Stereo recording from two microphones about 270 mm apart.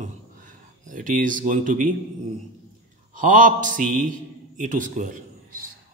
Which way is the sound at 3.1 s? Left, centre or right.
Right.